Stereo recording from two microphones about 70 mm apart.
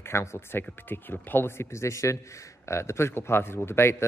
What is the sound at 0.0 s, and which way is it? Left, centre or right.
A man's voice, left.